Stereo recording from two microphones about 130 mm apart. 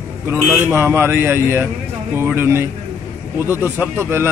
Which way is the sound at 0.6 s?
20° right (ahead or behind).